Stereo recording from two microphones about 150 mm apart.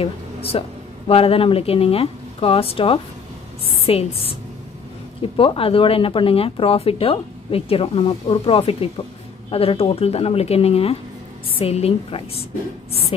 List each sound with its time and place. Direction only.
0.0 s speech: 40° left (ahead or behind)
5.4 s speech: 35° left (ahead or behind)